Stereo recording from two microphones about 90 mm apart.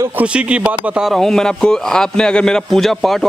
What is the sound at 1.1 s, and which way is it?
Speech, 5° left (ahead or behind).